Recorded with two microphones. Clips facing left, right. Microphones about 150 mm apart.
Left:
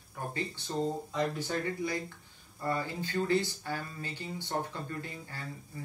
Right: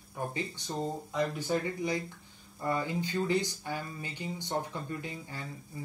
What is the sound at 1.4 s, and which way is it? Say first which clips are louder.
Speech: right 2 dB; 20° right (ahead or behind).